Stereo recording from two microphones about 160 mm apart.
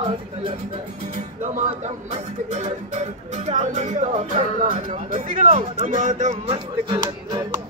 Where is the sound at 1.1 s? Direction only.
50° right (ahead or behind).